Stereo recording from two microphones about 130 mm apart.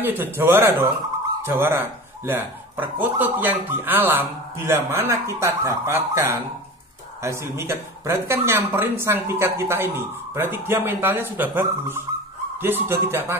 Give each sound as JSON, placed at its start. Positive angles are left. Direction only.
{"t": 0.0, "sound": "a man's voice", "side_deg": -15}